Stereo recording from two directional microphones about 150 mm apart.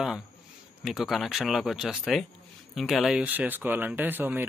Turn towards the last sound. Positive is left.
turn(degrees=-15)  # may be behind; listen again after turning